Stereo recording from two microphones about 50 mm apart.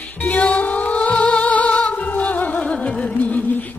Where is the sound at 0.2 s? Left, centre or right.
Left.